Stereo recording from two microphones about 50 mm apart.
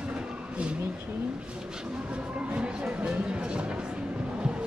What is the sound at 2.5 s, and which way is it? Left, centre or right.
Music, right.